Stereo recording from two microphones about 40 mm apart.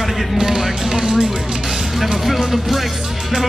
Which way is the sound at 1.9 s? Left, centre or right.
Centre.